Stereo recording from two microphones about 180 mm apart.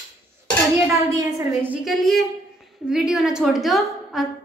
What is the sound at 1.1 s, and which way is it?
Speech, 20° right (ahead or behind).